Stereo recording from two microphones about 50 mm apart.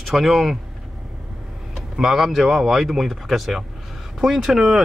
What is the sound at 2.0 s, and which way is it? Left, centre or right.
Speech, centre.